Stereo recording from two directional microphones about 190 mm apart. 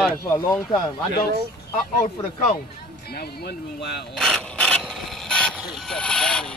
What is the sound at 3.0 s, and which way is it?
Speech, 55° left (ahead or behind).